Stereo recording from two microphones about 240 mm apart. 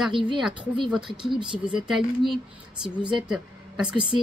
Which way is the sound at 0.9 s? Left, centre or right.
Centre.